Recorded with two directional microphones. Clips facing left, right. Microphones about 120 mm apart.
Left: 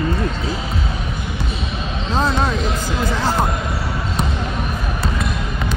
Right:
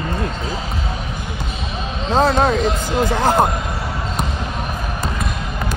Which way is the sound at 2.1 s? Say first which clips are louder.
Right 5 dB; 50° right (ahead or behind).